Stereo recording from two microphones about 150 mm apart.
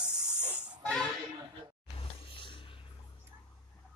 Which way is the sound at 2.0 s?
35° left (ahead or behind).